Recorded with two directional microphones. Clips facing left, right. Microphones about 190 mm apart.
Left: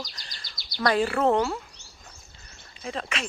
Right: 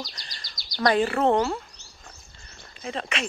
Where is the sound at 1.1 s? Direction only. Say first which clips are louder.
Right 1 dB; 35° right (ahead or behind).